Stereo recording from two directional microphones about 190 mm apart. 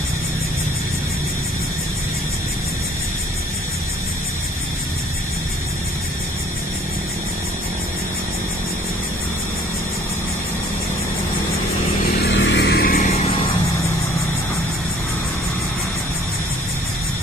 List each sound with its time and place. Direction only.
12.3 s vehicle: 70° left (ahead or behind); by 13.1 s 50° left (ahead or behind)